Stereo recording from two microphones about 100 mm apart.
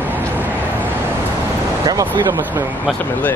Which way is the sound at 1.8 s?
40° right (ahead or behind).